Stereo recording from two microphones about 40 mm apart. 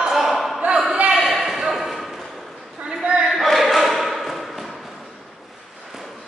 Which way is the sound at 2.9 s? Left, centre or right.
Right.